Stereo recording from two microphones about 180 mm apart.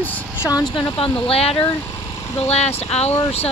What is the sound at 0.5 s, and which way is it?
Speech, 25° left (ahead or behind).